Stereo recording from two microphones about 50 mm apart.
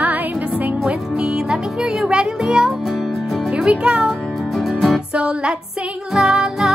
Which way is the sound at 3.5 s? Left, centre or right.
Centre.